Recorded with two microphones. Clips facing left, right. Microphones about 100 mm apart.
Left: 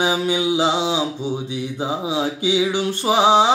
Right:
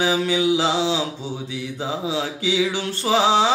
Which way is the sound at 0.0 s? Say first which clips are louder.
Even; 20° left (ahead or behind).